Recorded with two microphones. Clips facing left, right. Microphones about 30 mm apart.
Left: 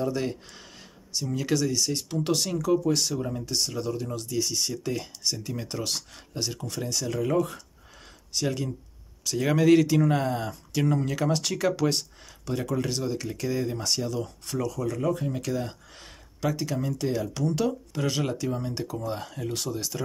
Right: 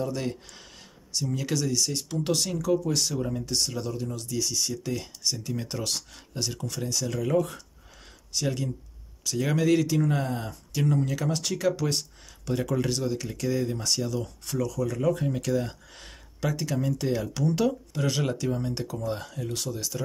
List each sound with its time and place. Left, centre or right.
0.0 s speech: centre
5.2 s speech: centre
5.5 s speech: centre
9.7 s speech: left
12.4 s speech: centre